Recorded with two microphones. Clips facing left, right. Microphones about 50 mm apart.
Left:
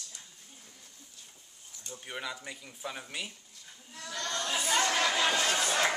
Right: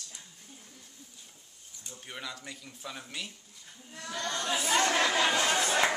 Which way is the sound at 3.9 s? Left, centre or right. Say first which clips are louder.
Right 2 dB; right.